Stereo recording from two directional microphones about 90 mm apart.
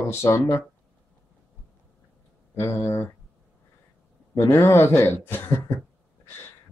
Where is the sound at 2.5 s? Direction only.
30° left (ahead or behind).